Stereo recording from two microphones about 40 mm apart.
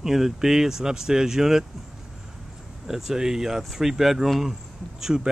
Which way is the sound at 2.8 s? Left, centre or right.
Centre.